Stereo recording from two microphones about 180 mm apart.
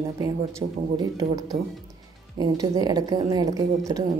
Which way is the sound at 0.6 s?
20° right (ahead or behind).